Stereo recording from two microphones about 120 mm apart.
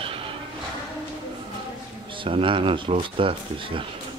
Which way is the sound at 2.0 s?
45° right (ahead or behind).